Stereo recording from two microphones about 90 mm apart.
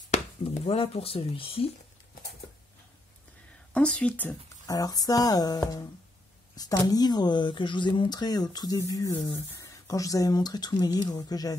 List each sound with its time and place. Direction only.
0.4 s speech: 90° left
3.7 s speech: 15° left (ahead or behind)
4.6 s speech: 45° left (ahead or behind)
8.7 s a sound: 40° left (ahead or behind)
9.2 s speech: 35° left (ahead or behind)